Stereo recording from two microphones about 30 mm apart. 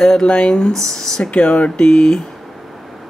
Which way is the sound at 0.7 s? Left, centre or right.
Centre.